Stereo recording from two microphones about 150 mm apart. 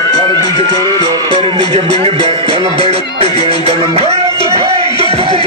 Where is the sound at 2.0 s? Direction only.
40° right (ahead or behind).